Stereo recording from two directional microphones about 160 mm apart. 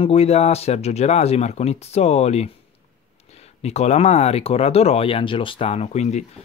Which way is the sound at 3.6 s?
45° left (ahead or behind).